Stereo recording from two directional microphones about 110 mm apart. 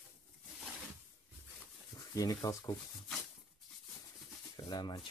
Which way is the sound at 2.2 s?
35° left (ahead or behind).